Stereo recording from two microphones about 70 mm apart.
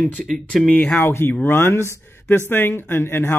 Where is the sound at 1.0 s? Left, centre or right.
Left.